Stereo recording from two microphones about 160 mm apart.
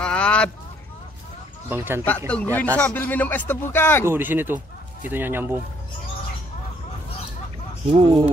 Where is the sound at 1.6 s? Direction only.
15° right (ahead or behind).